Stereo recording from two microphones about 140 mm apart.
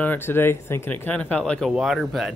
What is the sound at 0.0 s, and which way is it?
Speech, 15° left (ahead or behind).